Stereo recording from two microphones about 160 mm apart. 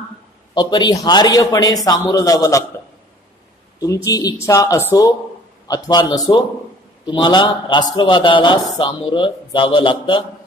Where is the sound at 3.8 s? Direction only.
20° left (ahead or behind).